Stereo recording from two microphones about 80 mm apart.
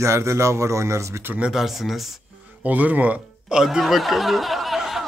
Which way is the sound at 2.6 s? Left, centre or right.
Centre.